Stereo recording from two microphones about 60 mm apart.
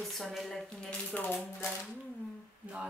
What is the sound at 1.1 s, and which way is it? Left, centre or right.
Speech, left.